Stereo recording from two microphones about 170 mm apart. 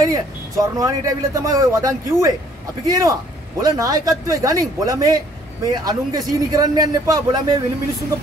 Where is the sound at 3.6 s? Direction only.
20° right (ahead or behind).